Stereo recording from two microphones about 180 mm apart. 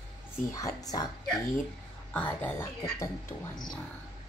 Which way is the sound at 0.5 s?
20° left (ahead or behind).